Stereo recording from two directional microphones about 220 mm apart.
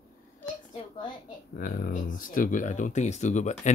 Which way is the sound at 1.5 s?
40° left (ahead or behind).